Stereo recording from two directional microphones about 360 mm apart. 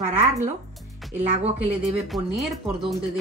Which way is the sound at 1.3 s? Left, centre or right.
Centre.